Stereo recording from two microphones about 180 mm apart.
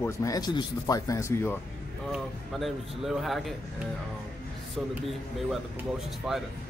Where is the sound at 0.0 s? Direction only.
20° left (ahead or behind).